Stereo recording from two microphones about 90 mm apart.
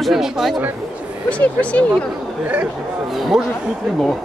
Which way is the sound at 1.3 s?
15° left (ahead or behind).